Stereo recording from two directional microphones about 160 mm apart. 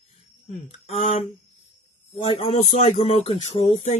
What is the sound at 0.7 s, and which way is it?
Speech, 40° left (ahead or behind).